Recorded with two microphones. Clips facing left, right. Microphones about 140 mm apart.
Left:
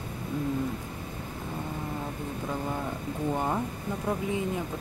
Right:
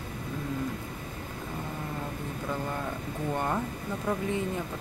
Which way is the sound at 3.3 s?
15° left (ahead or behind).